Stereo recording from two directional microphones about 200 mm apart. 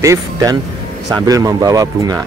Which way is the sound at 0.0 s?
15° right (ahead or behind).